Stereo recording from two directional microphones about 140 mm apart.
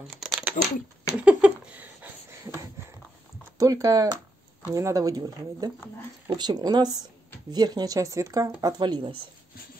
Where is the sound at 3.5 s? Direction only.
25° right (ahead or behind).